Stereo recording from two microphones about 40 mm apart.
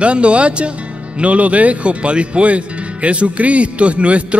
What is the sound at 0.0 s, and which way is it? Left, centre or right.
Speech, right.